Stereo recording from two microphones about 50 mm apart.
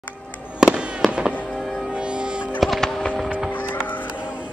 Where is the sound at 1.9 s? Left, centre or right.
Centre.